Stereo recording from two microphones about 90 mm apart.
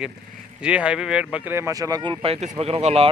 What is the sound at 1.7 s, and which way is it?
Speech, 40° right (ahead or behind).